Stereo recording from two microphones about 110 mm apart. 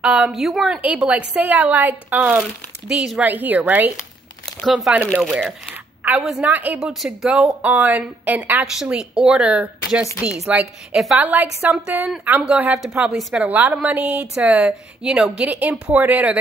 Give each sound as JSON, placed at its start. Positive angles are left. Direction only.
{"t": 0.0, "sound": "a woman's voice", "side_deg": -10}
{"t": 4.5, "sound": "speech", "side_deg": 0}
{"t": 5.0, "sound": "speech", "side_deg": 5}
{"t": 6.0, "sound": "a woman's voice", "side_deg": -15}
{"t": 6.8, "sound": "a woman's voice", "side_deg": 0}
{"t": 12.4, "sound": "a woman's voice", "side_deg": -5}